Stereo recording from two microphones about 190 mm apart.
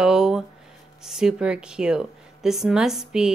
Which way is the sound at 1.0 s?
5° right (ahead or behind).